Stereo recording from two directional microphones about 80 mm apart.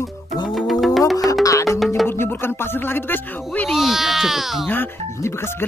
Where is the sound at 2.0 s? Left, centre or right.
Left.